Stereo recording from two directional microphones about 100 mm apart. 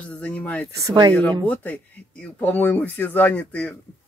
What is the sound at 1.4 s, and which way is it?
Speech, 15° left (ahead or behind).